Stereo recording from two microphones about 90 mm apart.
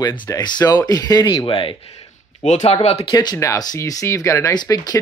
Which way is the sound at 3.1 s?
50° left (ahead or behind).